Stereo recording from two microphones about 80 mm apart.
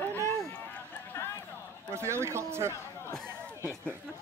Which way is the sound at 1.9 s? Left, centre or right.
Right.